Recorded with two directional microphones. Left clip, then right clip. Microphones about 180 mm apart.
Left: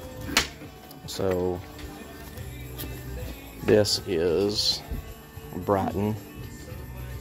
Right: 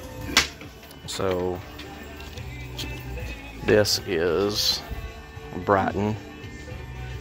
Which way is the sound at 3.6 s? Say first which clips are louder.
Right 1 dB; 15° left (ahead or behind).